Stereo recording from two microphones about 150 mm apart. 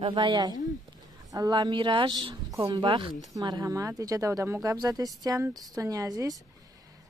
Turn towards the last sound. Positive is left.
turn(degrees=-25)  # may be behind; listen again after turning